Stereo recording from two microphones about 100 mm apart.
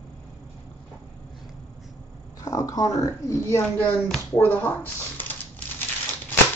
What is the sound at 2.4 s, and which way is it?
Speech, 40° left (ahead or behind).